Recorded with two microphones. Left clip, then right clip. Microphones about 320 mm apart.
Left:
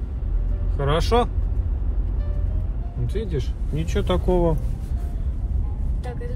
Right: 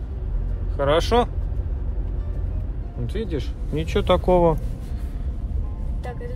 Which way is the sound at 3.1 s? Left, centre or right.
Right.